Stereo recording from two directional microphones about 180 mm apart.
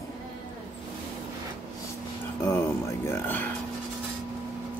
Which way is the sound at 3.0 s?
10° left (ahead or behind).